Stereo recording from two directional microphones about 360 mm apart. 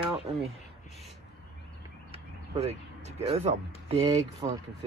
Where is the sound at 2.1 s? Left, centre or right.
Centre.